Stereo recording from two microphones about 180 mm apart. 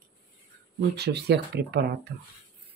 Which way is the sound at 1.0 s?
65° right (ahead or behind).